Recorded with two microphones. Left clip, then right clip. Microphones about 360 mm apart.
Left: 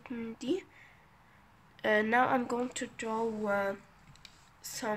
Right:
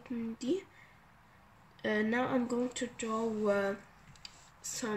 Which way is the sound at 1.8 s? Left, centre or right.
Left.